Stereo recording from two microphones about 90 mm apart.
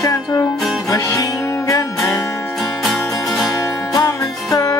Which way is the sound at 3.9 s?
40° left (ahead or behind).